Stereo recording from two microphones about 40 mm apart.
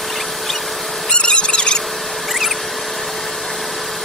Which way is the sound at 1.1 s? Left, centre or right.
Left.